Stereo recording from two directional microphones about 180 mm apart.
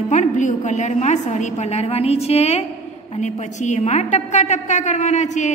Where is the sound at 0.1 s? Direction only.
45° left (ahead or behind).